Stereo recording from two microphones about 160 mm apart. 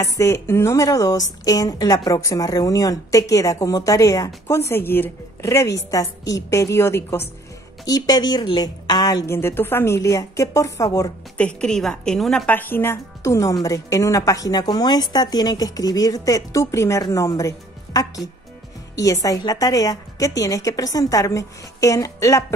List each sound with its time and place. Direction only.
0.0 s a woman's voice: 20° left (ahead or behind)
11.3 s a woman's voice: 5° left (ahead or behind)